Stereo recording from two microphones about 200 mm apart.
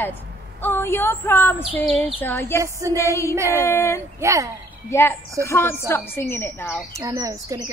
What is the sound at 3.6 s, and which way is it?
Speech, 15° left (ahead or behind).